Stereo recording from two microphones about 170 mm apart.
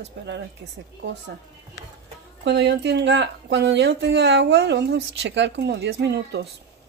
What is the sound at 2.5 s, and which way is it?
Speech, 90° right.